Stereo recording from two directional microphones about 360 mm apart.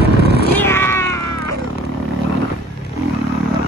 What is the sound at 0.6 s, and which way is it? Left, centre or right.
Cat, centre.